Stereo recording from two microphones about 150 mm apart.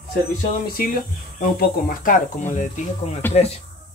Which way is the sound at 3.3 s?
45° left (ahead or behind).